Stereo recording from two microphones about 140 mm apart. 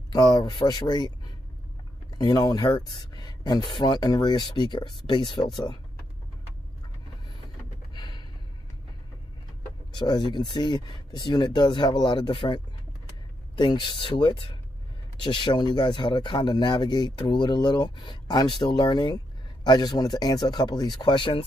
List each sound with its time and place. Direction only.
0.1 s speech: 30° left (ahead or behind)
7.9 s a sound: 30° left (ahead or behind)
9.9 s speech: 30° left (ahead or behind)